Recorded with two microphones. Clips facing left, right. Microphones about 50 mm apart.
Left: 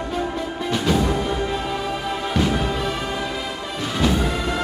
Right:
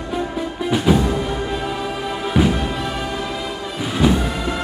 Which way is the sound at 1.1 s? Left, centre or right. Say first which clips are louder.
Even; centre.